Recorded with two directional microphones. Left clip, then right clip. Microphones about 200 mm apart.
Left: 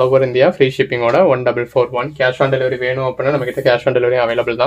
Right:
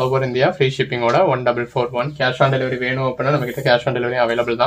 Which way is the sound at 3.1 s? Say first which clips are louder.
Left 3 dB; 50° left (ahead or behind).